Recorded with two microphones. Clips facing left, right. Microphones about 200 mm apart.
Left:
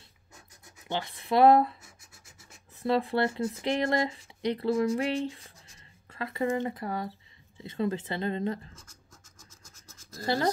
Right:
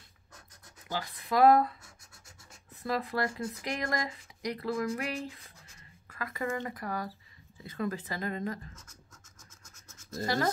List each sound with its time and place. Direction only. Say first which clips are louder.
0.8 s speech: left 4 dB; 25° left (ahead or behind)
2.8 s speech: left 6 dB; 30° left (ahead or behind)
6.0 s a sound: left 4 dB; 30° left (ahead or behind)
6.4 s speech: left 6 dB; 25° left (ahead or behind)